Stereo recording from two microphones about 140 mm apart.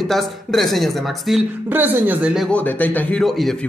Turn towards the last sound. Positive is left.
turn(degrees=0)  # may be behind; listen again after turning